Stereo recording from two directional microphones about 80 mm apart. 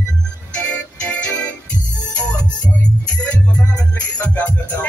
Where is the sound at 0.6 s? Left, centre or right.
Centre.